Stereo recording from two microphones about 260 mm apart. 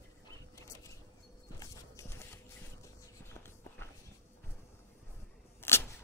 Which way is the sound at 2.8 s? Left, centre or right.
Centre.